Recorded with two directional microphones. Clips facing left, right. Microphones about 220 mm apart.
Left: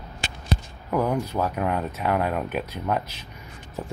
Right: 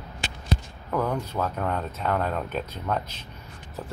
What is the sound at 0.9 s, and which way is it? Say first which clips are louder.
Speech: left 3 dB; 10° left (ahead or behind).